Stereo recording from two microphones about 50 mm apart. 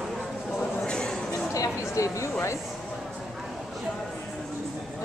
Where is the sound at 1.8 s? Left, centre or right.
Left.